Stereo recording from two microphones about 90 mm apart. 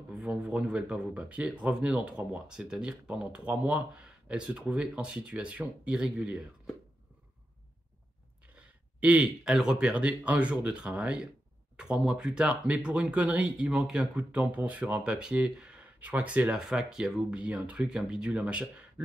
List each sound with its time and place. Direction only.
0.2 s speech: 15° right (ahead or behind)
9.0 s speech: 10° right (ahead or behind)